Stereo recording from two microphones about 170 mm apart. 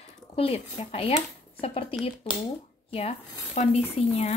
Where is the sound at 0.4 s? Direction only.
35° left (ahead or behind).